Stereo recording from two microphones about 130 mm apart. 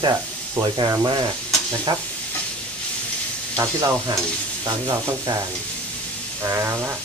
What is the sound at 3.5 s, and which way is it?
Speech, 25° right (ahead or behind).